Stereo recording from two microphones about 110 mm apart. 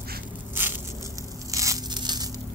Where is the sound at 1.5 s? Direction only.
30° right (ahead or behind).